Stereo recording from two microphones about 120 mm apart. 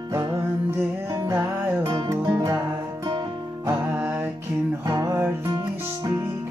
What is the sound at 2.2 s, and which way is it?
Music, 35° right (ahead or behind).